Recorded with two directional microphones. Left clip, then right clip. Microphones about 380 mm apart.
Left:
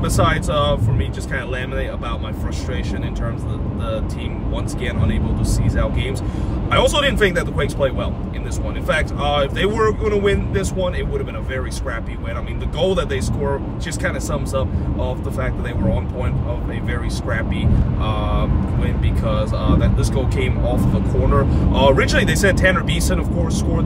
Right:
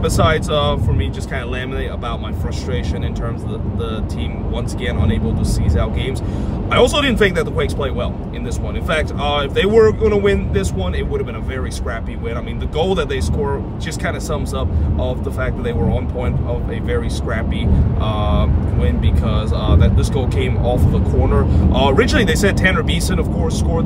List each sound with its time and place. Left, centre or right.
0.0 s speech: centre
5.7 s speech: centre
12.7 s speech: centre
19.2 s speech: centre
21.7 s speech: centre